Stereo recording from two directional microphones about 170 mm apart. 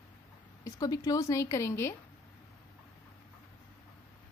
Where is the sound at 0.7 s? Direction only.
20° left (ahead or behind).